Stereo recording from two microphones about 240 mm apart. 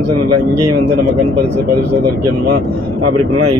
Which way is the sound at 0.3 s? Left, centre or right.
Right.